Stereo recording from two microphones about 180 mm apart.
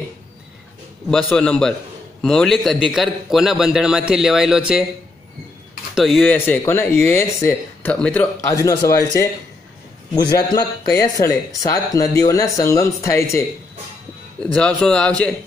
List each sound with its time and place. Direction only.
1.0 s a man's voice: 5° left (ahead or behind)
5.9 s a man's voice: centre (ahead or behind)
6.3 s speech: 10° left (ahead or behind)
8.4 s speech: 20° left (ahead or behind)
14.4 s a man's voice: 5° left (ahead or behind)